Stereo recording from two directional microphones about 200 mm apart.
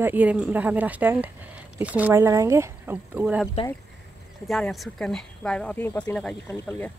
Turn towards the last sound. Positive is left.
turn(degrees=10)  # may be behind; listen again after turning